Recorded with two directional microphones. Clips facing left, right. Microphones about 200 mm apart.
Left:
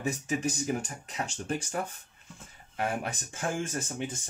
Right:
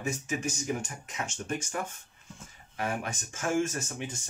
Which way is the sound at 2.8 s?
35° left (ahead or behind).